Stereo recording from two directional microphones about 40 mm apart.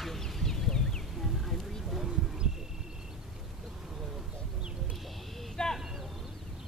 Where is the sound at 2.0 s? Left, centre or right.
Centre.